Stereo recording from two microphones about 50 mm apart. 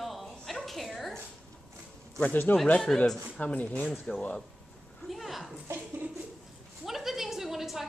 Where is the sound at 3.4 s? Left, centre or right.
Left.